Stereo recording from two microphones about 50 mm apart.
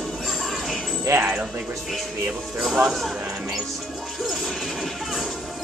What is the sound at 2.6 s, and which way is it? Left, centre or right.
Music, centre.